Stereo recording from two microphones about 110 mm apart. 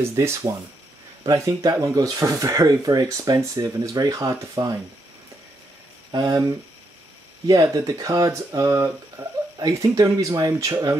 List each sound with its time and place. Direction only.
0.0 s speech: 25° right (ahead or behind)
6.1 s speech: 30° right (ahead or behind)
9.2 s a sound: 20° right (ahead or behind)
9.6 s speech: 30° right (ahead or behind)